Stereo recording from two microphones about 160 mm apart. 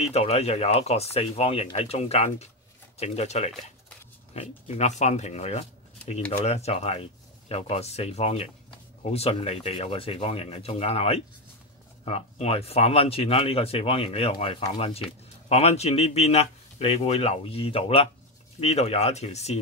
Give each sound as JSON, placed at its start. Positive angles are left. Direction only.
{"t": 0.0, "sound": "speech", "side_deg": 40}